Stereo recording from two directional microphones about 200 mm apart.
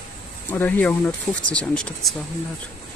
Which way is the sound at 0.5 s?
10° left (ahead or behind).